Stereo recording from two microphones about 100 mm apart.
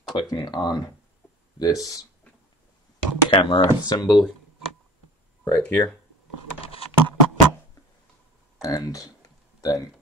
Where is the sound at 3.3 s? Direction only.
60° left (ahead or behind).